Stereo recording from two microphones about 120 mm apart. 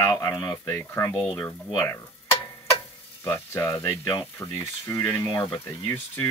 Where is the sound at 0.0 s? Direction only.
30° left (ahead or behind).